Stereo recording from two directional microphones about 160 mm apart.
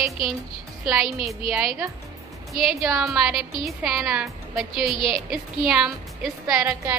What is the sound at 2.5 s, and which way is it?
A woman's voice, centre (ahead or behind).